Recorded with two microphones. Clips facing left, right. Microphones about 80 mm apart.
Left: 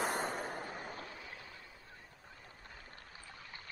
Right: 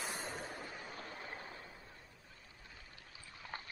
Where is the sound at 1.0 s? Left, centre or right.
Right.